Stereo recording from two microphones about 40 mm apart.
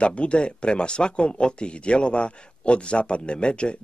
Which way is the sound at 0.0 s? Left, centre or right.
Left.